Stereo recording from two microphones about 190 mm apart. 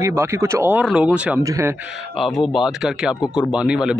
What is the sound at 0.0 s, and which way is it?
Speech, 15° right (ahead or behind).